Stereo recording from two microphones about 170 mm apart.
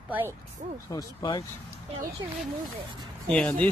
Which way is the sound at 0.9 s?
20° left (ahead or behind).